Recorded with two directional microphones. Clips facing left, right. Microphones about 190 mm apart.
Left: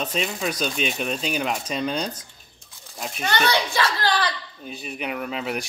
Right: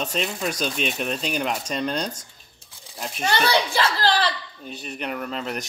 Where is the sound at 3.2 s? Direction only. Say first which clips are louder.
Right 1 dB; 30° right (ahead or behind).